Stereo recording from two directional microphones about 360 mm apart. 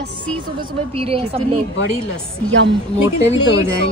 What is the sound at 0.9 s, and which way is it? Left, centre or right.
Speech, centre.